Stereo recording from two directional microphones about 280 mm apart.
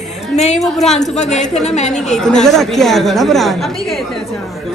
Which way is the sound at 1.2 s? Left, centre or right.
Left.